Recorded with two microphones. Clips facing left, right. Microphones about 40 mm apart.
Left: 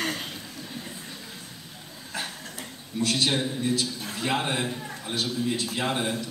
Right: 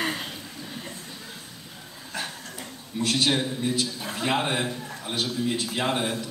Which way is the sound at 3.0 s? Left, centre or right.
Centre.